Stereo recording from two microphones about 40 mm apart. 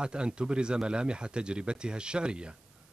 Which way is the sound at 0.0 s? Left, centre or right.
Right.